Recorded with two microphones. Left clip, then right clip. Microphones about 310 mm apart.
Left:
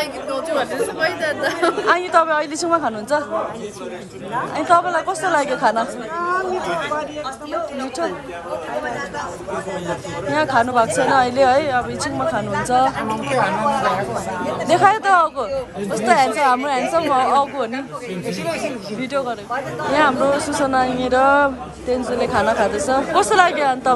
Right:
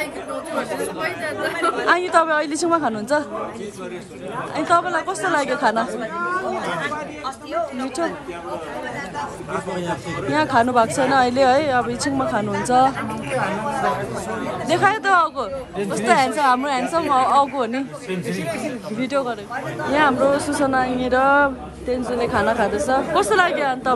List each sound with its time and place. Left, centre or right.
1.0 s speech: centre
1.9 s speech: centre
4.6 s speech: centre
10.3 s speech: centre
14.7 s speech: centre
18.9 s speech: centre